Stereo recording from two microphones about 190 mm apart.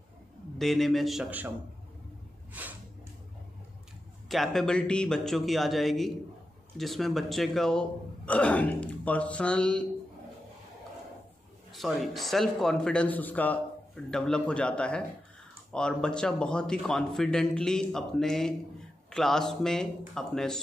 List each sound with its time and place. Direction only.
0.6 s a man's voice: centre (ahead or behind)
2.6 s a sound: 10° right (ahead or behind)
4.3 s a man's voice: centre (ahead or behind)
11.7 s a man's voice: centre (ahead or behind)